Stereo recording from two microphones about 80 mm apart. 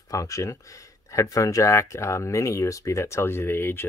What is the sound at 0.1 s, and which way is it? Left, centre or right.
Speech, left.